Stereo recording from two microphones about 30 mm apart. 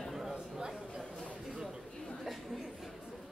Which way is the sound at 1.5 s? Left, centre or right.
Right.